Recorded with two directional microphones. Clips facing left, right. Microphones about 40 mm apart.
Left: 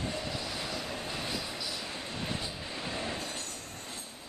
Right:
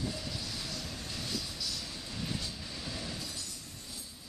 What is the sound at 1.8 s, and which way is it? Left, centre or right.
Train, left.